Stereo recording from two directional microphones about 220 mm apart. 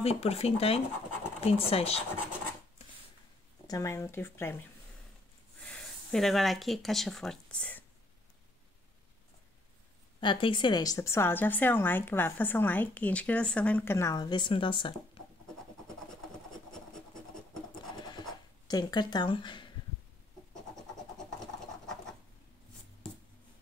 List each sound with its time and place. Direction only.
0.0 s speech: 30° left (ahead or behind)
3.6 s a woman's voice: 15° left (ahead or behind)
5.6 s speech: 5° left (ahead or behind)
10.2 s a woman's voice: 20° left (ahead or behind)
16.7 s scratch: 5° left (ahead or behind)
18.7 s speech: 20° left (ahead or behind)
20.5 s scratch: centre (ahead or behind)